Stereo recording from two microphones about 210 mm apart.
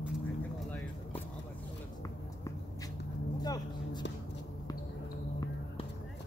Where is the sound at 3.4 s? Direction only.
20° left (ahead or behind).